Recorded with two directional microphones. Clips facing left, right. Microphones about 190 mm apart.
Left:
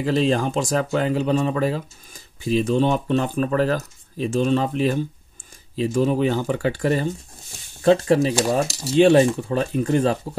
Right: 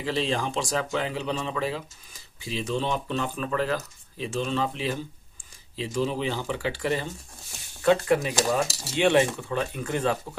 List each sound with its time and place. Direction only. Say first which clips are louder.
0.0 s speech: left 7 dB; 45° left (ahead or behind)
7.8 s speech: left 5 dB; 35° left (ahead or behind)